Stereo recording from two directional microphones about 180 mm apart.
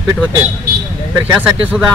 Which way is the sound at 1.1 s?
10° right (ahead or behind).